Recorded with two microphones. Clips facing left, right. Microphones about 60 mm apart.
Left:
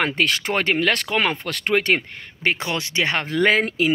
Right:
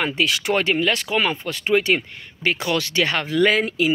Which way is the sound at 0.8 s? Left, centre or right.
Left.